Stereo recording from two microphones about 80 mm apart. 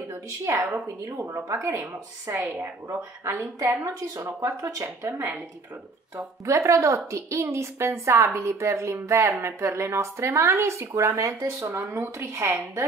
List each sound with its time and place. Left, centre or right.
0.1 s a woman's voice: right
4.8 s a woman's voice: right